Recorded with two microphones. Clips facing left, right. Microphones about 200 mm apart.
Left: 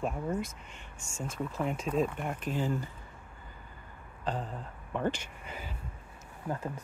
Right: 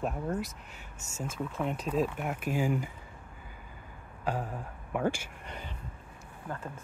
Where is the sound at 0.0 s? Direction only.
Centre (ahead or behind).